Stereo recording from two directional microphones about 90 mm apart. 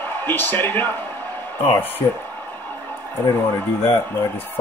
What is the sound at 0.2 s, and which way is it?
Speech, 20° left (ahead or behind).